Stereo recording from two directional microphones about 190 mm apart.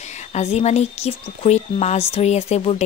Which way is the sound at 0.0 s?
35° left (ahead or behind).